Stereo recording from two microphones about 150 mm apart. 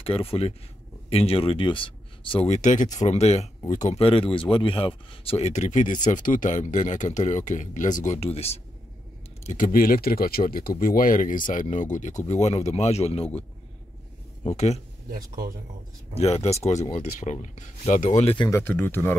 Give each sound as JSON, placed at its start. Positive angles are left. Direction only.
{"t": 0.0, "sound": "speech", "side_deg": 40}
{"t": 2.5, "sound": "speech", "side_deg": 55}
{"t": 4.0, "sound": "speech", "side_deg": 40}
{"t": 9.4, "sound": "speech", "side_deg": 55}
{"t": 14.5, "sound": "speech", "side_deg": 50}
{"t": 15.0, "sound": "speech", "side_deg": -65}
{"t": 16.2, "sound": "speech", "side_deg": 45}
{"t": 18.5, "sound": "speech", "side_deg": 15}